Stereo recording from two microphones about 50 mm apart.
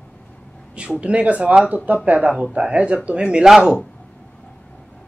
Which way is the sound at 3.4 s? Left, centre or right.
Centre.